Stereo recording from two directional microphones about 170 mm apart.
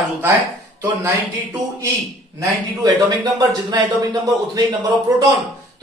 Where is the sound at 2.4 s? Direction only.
25° right (ahead or behind).